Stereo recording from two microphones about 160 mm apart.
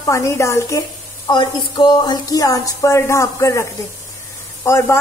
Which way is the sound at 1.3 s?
30° left (ahead or behind).